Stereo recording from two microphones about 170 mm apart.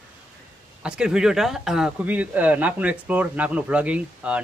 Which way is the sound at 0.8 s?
5° right (ahead or behind).